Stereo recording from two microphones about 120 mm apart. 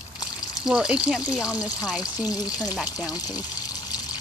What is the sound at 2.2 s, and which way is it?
Speech, 35° left (ahead or behind).